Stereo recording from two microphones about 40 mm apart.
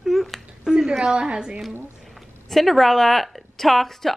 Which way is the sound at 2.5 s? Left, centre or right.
Centre.